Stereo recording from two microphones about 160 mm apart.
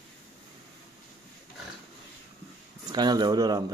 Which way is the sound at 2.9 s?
25° right (ahead or behind).